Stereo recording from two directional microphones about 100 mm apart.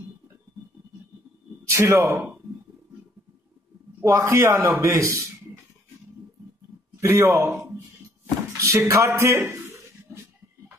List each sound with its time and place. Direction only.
1.7 s speech: 25° right (ahead or behind)
4.0 s a man's voice: 30° right (ahead or behind)
7.0 s a man's voice: 30° right (ahead or behind)
10.1 s a sound: 25° right (ahead or behind)